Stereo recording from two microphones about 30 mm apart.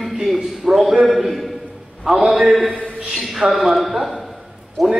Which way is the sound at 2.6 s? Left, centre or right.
Left.